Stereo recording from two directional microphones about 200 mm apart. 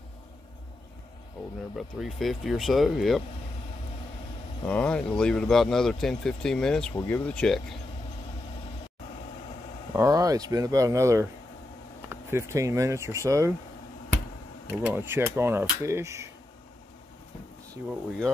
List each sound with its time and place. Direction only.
1.8 s speech: centre (ahead or behind)
4.6 s speech: 5° left (ahead or behind)
9.9 s speech: 15° right (ahead or behind)
14.7 s speech: 10° right (ahead or behind)